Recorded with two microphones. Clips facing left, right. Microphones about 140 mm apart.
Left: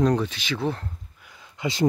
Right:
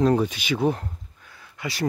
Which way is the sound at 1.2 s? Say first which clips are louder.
Left 4 dB; 20° left (ahead or behind).